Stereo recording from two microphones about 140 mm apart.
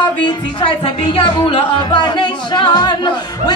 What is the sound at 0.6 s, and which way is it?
Speech, 40° left (ahead or behind).